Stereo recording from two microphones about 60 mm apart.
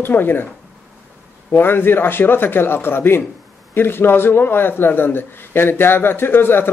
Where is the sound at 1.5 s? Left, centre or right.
Left.